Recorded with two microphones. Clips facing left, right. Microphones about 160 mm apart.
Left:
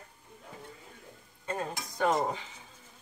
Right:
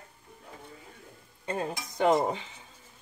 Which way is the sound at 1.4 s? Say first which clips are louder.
Right 3 dB; 20° right (ahead or behind).